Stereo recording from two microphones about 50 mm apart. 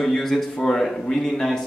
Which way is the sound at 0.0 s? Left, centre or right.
Centre.